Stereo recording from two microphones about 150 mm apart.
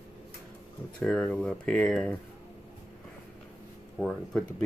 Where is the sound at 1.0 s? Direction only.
Centre (ahead or behind).